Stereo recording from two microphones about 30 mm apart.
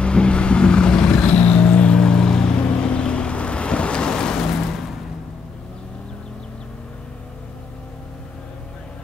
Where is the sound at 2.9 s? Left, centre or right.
Left.